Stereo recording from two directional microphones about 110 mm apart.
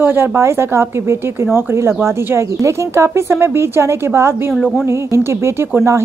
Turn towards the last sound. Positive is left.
turn(degrees=-25)  # may be behind; listen again after turning